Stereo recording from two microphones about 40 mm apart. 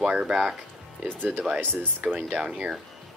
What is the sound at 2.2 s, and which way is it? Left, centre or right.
Speech, right.